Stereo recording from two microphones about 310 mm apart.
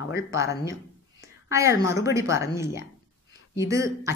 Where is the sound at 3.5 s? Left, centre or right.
Centre.